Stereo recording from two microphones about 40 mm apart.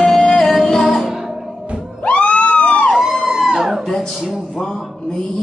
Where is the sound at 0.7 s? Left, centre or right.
Centre.